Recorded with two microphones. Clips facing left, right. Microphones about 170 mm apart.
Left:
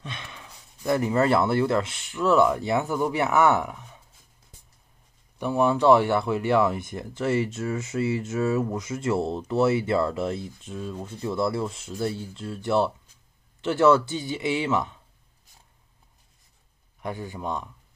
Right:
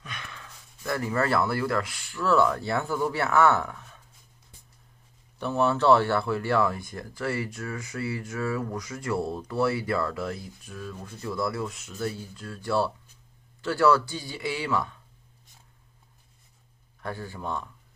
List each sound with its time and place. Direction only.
0.0 s speech: 25° left (ahead or behind)
5.4 s speech: 15° left (ahead or behind)
17.0 s a man's voice: 15° left (ahead or behind)